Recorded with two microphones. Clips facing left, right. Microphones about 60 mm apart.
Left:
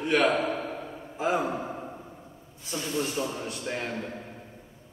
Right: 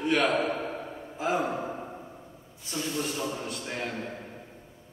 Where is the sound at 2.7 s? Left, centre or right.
Centre.